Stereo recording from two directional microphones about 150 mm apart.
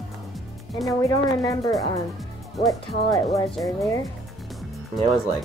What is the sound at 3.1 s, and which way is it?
Speech, 20° left (ahead or behind).